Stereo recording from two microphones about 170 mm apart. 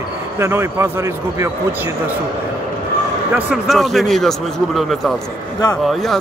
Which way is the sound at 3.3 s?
10° right (ahead or behind).